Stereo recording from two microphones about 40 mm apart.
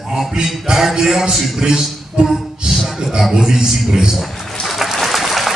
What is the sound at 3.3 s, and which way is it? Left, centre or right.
Music, centre.